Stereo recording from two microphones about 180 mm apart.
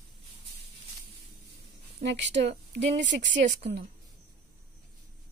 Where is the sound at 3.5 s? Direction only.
70° right (ahead or behind).